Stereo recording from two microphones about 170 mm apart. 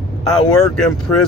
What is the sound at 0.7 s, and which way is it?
Speech, 5° left (ahead or behind).